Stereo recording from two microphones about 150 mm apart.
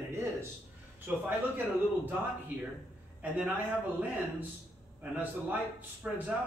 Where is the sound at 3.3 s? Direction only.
10° right (ahead or behind).